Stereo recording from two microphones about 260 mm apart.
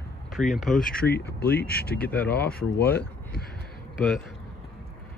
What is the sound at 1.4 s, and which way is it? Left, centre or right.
Speech, left.